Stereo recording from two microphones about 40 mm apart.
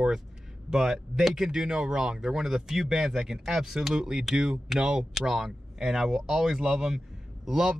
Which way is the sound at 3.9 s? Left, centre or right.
Centre.